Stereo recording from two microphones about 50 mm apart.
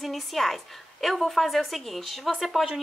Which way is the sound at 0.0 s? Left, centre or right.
Centre.